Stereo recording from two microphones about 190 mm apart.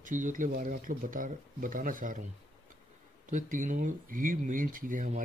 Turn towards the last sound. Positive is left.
turn(degrees=-45)  # may be behind; listen again after turning